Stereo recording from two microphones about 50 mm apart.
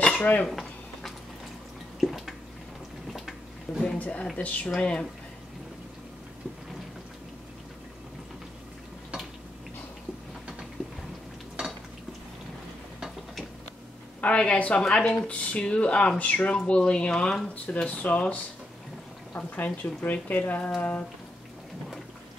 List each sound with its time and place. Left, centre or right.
0.0 s dishes: left
0.5 s a sound: centre
2.0 s drip: centre
3.1 s a sound: centre
4.0 s speech: left
4.7 s speech: centre
14.2 s speech: left
14.9 s speech: centre
15.2 s speech: left
17.8 s speech: left